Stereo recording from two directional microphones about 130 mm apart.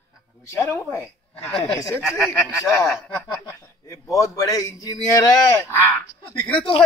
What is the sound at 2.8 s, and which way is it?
Speech, centre (ahead or behind).